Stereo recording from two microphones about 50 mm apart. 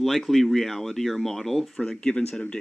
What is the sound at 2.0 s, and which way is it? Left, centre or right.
Speech, centre.